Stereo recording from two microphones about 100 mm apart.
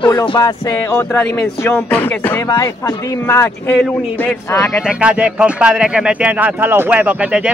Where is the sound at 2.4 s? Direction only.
35° left (ahead or behind).